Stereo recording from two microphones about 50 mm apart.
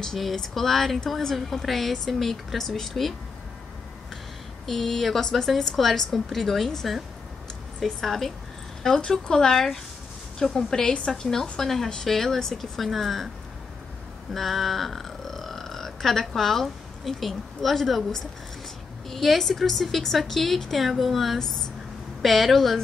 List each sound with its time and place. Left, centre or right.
0.0 s speech: centre
4.6 s speech: centre
14.3 s speech: centre